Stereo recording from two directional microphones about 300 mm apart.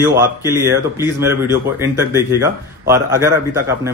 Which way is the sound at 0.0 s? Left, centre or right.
Centre.